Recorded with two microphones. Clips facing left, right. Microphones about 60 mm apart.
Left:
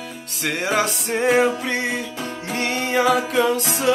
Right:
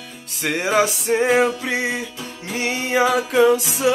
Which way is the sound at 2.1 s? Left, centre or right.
Left.